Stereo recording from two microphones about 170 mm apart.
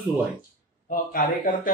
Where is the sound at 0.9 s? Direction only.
55° left (ahead or behind).